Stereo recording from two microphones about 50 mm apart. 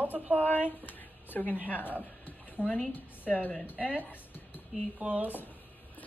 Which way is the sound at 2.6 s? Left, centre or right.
Right.